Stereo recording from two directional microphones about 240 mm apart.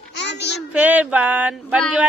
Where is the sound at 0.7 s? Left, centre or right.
Centre.